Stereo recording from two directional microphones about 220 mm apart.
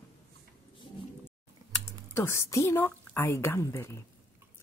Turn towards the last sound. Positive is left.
turn(degrees=15)  # may be behind; listen again after turning